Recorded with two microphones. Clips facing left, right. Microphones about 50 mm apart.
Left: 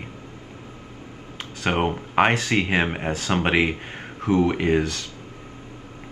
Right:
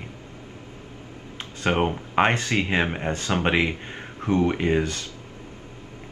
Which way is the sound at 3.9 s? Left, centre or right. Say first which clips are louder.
Left 2 dB; centre.